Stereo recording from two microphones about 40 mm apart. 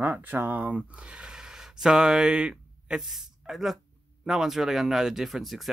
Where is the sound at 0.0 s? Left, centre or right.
Right.